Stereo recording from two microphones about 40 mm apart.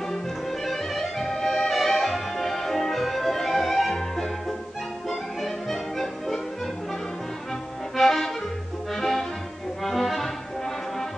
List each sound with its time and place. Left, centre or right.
0.1 s music: centre
7.9 s accordion: centre
8.9 s music: centre